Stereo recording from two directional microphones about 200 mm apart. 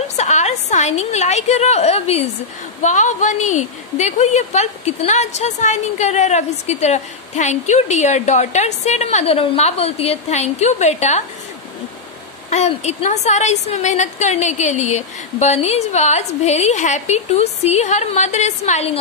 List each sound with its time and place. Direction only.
0.1 s a woman's voice: 35° left (ahead or behind)
12.4 s a woman's voice: 35° left (ahead or behind)